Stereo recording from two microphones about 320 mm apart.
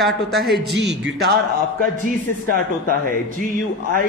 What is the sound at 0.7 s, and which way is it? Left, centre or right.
Speech, right.